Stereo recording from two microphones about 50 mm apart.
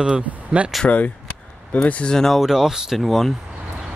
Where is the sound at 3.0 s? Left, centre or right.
Centre.